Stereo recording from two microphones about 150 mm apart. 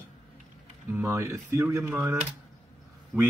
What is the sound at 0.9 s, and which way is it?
Speech, 20° right (ahead or behind).